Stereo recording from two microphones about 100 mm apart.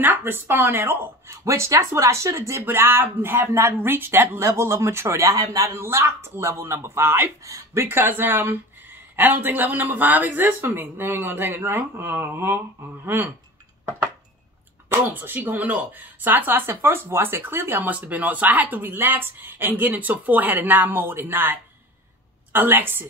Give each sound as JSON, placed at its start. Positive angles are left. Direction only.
{"t": 0.0, "sound": "speech", "side_deg": -20}
{"t": 7.4, "sound": "speech", "side_deg": -35}
{"t": 7.8, "sound": "speech", "side_deg": -20}
{"t": 14.9, "sound": "speech", "side_deg": -20}